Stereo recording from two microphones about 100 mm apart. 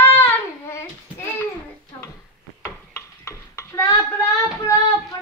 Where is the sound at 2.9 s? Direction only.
30° left (ahead or behind).